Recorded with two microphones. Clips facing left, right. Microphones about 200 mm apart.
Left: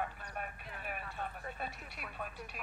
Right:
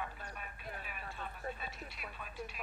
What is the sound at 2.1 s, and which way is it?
Speech, 55° left (ahead or behind).